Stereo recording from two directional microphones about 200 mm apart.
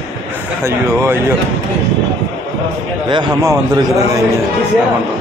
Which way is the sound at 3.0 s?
20° right (ahead or behind).